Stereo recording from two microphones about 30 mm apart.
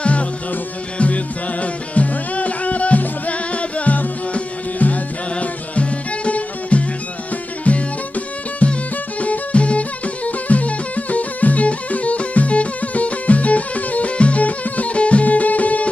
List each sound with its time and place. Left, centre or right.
0.0 s music: left
5.4 s music: left
14.1 s music: left
14.4 s music: left
15.2 s music: left